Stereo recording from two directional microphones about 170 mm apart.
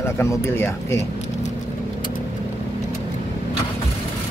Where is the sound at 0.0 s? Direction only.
15° left (ahead or behind).